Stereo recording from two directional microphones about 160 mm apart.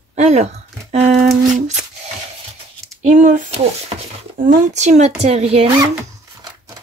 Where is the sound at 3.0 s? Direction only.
55° right (ahead or behind).